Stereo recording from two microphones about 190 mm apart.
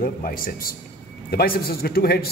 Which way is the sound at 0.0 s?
45° left (ahead or behind).